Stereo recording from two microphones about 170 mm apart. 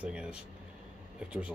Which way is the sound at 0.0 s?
5° right (ahead or behind).